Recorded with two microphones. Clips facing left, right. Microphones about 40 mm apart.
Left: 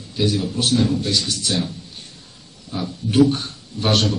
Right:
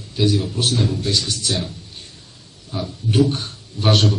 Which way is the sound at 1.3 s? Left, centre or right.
Centre.